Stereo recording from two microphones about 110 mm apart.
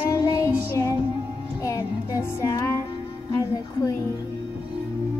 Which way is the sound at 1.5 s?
30° left (ahead or behind).